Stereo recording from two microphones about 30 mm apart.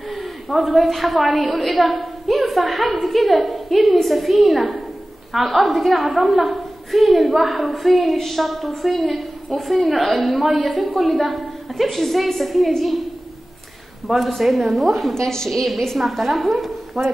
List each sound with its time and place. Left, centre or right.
0.1 s a woman's voice: centre
14.0 s a woman's voice: centre
15.2 s a woman's voice: centre
16.0 s a woman's voice: centre